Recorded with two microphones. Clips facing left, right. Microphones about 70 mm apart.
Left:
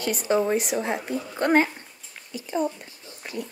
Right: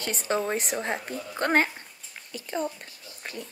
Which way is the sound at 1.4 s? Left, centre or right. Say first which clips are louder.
Left 3 dB; right.